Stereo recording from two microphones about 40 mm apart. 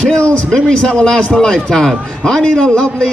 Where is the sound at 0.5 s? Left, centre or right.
Centre.